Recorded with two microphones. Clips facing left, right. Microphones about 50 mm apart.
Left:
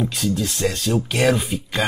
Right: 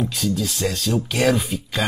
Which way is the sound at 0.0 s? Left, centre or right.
Centre.